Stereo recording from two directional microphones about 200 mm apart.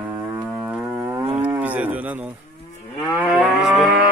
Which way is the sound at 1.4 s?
10° right (ahead or behind).